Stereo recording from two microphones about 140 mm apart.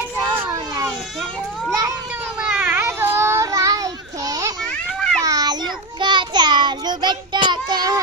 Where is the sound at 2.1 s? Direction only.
10° right (ahead or behind); by 4.6 s 25° right (ahead or behind).